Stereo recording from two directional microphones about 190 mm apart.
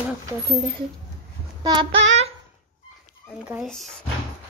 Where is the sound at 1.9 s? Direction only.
75° right (ahead or behind).